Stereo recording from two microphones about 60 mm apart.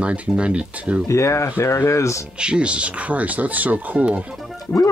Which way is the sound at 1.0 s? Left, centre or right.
Left.